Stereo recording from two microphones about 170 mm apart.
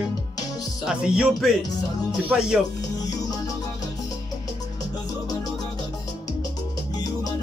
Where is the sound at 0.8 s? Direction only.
5° right (ahead or behind).